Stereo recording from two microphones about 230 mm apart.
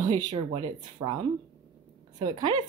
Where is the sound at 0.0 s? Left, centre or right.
Centre.